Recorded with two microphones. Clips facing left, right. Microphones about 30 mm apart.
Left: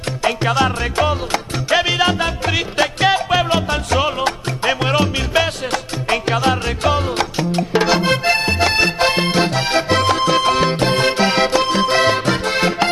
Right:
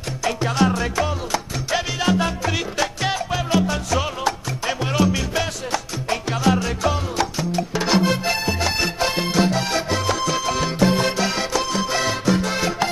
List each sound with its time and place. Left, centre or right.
0.7 s music: left